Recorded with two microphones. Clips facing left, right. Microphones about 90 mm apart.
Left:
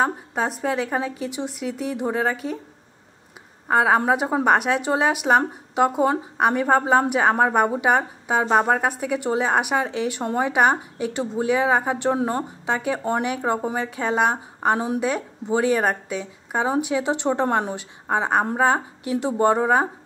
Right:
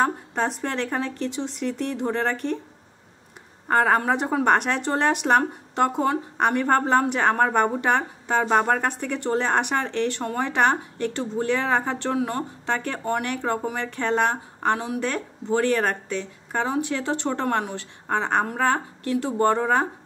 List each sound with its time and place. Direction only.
0.0 s speech: 5° left (ahead or behind)
3.6 s a woman's voice: 5° left (ahead or behind)